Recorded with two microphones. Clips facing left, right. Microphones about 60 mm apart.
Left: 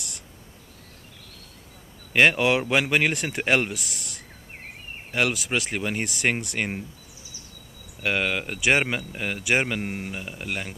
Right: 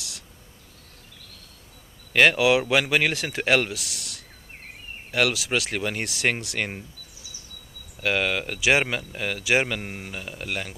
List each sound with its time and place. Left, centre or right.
2.1 s speech: centre
3.7 s speech: right
5.1 s speech: centre
8.0 s speech: centre